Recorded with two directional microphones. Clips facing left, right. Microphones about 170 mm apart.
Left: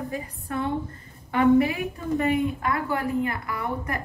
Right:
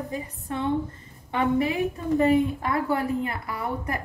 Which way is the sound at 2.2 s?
35° right (ahead or behind).